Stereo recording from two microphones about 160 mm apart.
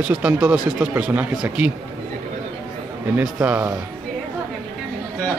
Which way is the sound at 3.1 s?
10° right (ahead or behind).